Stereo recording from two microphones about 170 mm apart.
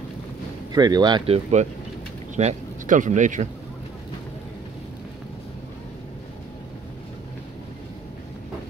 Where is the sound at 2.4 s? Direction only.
45° right (ahead or behind).